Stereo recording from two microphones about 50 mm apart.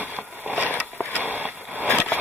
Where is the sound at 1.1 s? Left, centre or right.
Right.